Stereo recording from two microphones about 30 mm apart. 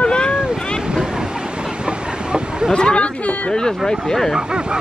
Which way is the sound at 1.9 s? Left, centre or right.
Right.